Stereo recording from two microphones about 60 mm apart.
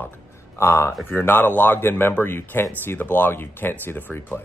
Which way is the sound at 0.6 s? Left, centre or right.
Left.